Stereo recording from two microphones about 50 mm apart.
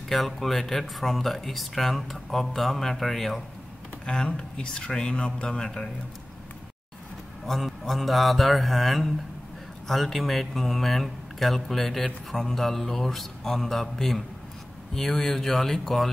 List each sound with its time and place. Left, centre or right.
0.1 s speech: centre
4.0 s speech: centre
7.4 s speech: centre